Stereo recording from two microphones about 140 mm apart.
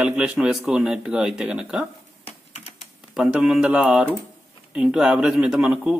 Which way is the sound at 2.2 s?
45° left (ahead or behind).